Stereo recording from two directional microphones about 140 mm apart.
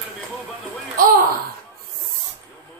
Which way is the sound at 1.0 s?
80° right.